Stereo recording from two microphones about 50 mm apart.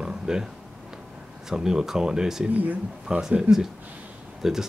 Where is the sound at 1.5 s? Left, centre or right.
Centre.